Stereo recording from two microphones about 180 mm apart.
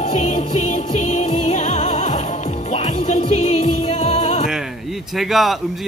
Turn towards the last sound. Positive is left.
turn(degrees=0)  # may be behind; listen again after turning